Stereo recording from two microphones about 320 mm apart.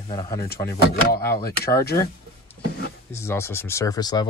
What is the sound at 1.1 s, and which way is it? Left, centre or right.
Speech, left.